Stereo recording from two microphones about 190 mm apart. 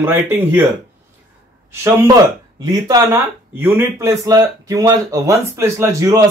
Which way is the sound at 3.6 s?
15° right (ahead or behind).